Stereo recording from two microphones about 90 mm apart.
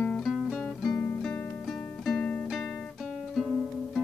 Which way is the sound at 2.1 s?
15° left (ahead or behind).